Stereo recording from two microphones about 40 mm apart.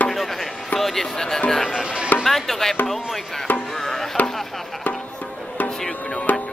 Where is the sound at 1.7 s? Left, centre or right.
Centre.